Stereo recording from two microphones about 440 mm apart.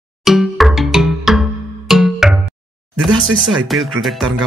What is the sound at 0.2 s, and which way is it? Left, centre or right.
Music, centre.